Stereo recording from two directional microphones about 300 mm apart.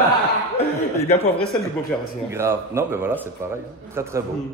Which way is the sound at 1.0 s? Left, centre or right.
Centre.